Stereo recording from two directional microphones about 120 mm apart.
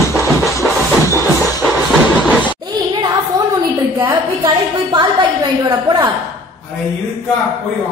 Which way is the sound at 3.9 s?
25° right (ahead or behind).